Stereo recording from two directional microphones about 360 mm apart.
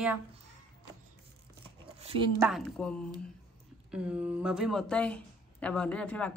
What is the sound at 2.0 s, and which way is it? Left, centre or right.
Speech, centre.